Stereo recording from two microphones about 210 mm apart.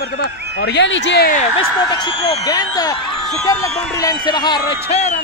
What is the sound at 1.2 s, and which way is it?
Speech, 40° left (ahead or behind).